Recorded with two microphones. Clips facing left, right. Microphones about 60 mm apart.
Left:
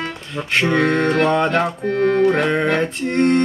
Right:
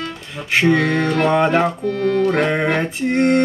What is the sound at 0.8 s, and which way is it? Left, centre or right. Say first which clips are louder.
Mantra: left 1 dB; left.